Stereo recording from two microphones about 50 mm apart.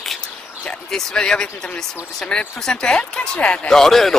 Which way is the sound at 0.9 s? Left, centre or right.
Centre.